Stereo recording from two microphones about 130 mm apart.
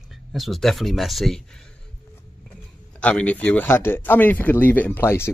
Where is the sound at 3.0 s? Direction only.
10° left (ahead or behind).